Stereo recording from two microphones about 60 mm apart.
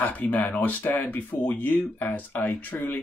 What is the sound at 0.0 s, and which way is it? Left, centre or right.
Speech, left.